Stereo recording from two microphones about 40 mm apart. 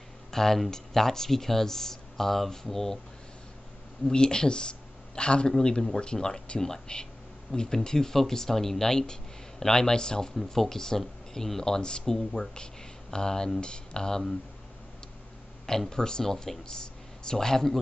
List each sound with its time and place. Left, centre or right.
0.3 s speech: centre
4.1 s speech: left
6.4 s speech: left
10.3 s speech: centre
15.9 s speech: centre